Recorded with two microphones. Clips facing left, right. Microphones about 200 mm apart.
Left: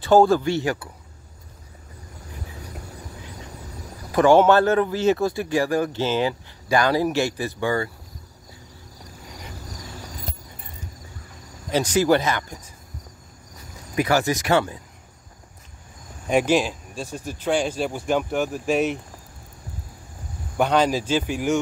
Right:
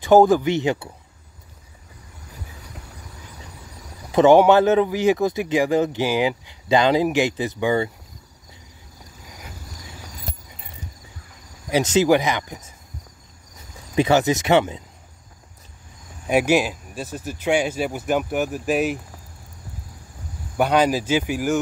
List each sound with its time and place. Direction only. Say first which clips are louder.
0.0 s speech: right 2 dB; 15° right (ahead or behind)
4.1 s speech: right 2 dB; 20° right (ahead or behind)
11.7 s speech: right 2 dB; 20° right (ahead or behind)
13.9 s speech: right 3 dB; 20° right (ahead or behind)
16.3 s speech: right 1 dB; 10° right (ahead or behind)
20.5 s speech: right 1 dB; 10° right (ahead or behind)